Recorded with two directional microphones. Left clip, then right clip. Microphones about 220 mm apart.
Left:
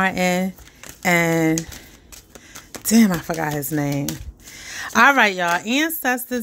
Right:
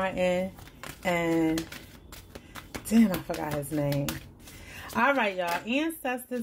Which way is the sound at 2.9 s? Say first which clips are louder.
Left 8 dB; 40° left (ahead or behind).